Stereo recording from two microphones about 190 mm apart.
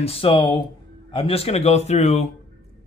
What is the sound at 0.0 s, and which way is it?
Speech, 30° left (ahead or behind).